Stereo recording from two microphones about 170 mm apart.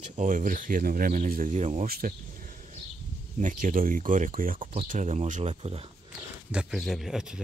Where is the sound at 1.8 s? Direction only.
60° right (ahead or behind).